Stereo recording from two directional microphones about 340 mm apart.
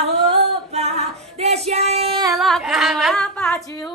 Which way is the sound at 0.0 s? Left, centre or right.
Centre.